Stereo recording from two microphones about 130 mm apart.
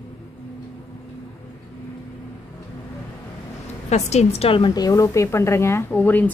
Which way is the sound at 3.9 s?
60° left (ahead or behind).